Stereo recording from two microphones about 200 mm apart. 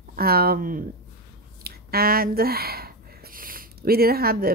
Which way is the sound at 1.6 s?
50° right (ahead or behind).